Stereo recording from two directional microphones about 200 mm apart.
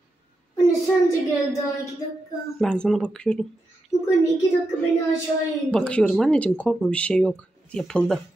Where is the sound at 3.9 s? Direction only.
15° left (ahead or behind).